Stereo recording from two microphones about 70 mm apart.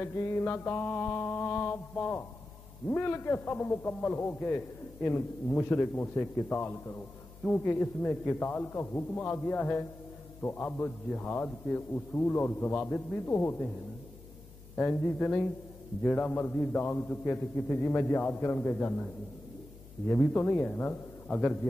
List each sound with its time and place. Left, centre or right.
0.0 s a man's voice: left
14.8 s a man's voice: left
20.1 s a man's voice: left
21.3 s a man's voice: centre